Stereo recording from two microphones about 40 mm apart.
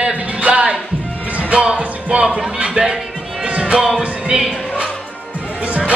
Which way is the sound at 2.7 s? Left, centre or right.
Centre.